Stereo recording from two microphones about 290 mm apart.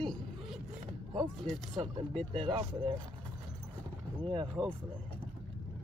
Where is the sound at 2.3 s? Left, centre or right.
Centre.